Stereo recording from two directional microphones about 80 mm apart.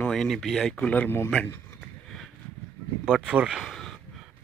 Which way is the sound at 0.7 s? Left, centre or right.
Centre.